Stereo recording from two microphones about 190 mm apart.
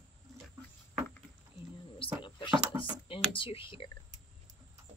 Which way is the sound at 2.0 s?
25° left (ahead or behind).